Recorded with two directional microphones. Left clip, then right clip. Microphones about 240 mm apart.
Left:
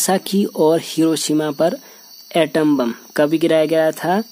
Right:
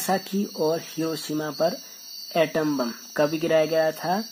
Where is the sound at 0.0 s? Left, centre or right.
Left.